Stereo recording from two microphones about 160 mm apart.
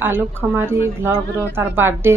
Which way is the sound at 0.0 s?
15° right (ahead or behind).